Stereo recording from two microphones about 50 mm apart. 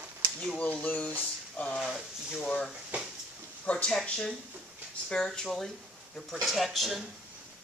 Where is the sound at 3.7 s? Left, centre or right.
Left.